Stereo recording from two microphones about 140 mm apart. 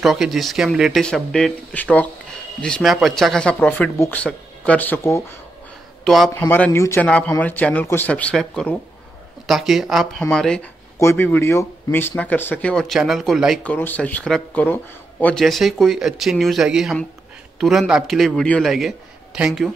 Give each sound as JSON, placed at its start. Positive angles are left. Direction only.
{"t": 0.0, "sound": "a man's voice", "side_deg": 0}
{"t": 6.0, "sound": "a man's voice", "side_deg": 0}
{"t": 6.4, "sound": "a man's voice", "side_deg": 15}
{"t": 11.0, "sound": "speech", "side_deg": 20}
{"t": 12.7, "sound": "a man's voice", "side_deg": 0}
{"t": 13.7, "sound": "speech", "side_deg": 10}
{"t": 15.4, "sound": "a man's voice", "side_deg": 0}